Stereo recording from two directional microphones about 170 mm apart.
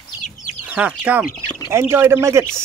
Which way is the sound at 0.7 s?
10° right (ahead or behind).